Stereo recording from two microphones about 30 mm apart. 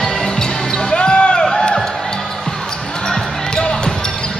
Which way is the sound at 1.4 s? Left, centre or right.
Centre.